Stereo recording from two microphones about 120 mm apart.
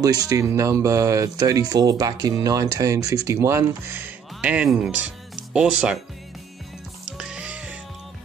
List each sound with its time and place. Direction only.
0.0 s speech: 30° right (ahead or behind); by 5.9 s 5° right (ahead or behind)
7.2 s music: 5° right (ahead or behind)